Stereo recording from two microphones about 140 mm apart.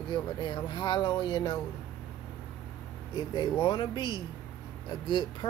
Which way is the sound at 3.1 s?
35° left (ahead or behind).